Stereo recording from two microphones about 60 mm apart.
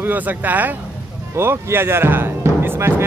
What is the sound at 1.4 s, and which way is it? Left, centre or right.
Speech, right.